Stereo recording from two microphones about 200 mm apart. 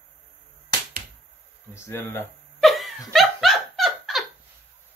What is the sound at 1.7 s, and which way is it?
Speech, 15° left (ahead or behind).